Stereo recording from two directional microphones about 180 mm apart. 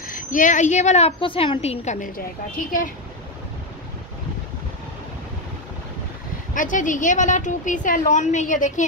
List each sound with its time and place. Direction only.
0.0 s a woman's voice: 50° left (ahead or behind)
6.5 s a woman's voice: 45° left (ahead or behind)